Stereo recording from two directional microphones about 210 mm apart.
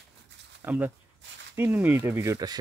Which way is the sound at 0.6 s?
10° right (ahead or behind).